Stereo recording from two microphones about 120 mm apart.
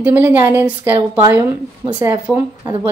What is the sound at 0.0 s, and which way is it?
Speech, 15° right (ahead or behind).